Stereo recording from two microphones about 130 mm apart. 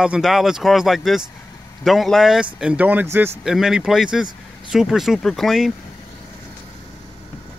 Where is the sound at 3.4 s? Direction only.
5° right (ahead or behind).